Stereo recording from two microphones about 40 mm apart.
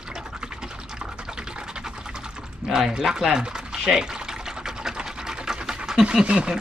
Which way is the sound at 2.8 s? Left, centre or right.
Centre.